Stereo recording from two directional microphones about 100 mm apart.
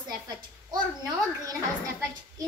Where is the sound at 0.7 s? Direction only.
35° right (ahead or behind).